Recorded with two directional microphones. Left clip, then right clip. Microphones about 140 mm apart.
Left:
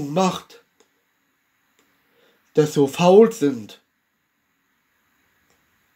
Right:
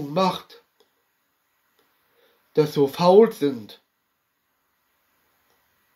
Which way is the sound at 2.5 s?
15° left (ahead or behind).